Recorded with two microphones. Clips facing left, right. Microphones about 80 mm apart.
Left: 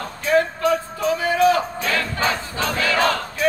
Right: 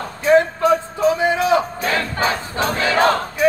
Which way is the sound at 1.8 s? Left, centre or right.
Right.